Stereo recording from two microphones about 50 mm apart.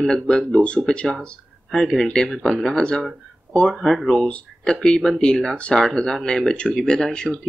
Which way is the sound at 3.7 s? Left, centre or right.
Centre.